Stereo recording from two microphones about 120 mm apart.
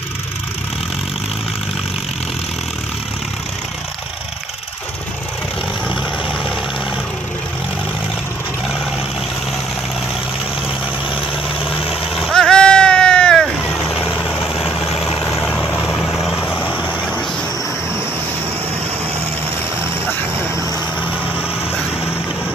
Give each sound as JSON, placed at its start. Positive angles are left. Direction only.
{"t": 11.7, "sound": "vehicle", "side_deg": -5}
{"t": 16.3, "sound": "vehicle", "side_deg": 15}